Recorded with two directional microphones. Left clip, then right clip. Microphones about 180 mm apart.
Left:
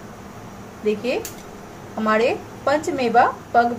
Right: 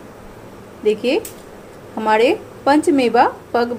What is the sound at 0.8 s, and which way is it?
A woman's voice, 50° right (ahead or behind).